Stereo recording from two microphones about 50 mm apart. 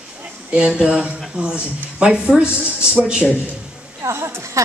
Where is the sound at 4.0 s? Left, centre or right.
Right.